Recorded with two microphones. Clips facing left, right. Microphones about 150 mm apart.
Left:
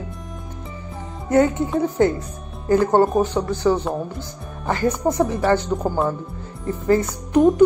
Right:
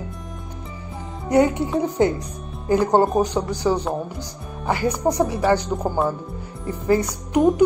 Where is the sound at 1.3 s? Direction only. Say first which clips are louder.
Even; 15° right (ahead or behind).